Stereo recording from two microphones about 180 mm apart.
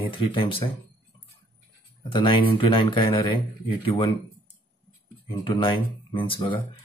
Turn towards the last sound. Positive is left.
turn(degrees=30)  # may be behind; listen again after turning